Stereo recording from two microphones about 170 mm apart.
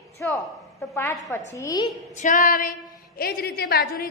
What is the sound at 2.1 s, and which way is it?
Speech, 50° left (ahead or behind).